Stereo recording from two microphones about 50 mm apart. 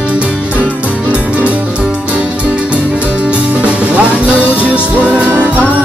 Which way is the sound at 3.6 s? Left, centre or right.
Right.